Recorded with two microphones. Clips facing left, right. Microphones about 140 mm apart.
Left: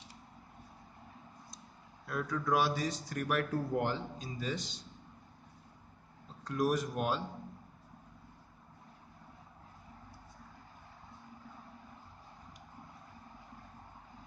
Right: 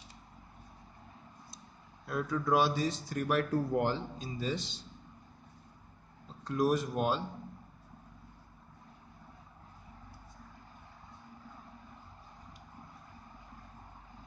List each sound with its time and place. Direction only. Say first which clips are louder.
2.0 s speech: right 2 dB; 25° right (ahead or behind)
6.4 s speech: right 2 dB; 25° right (ahead or behind)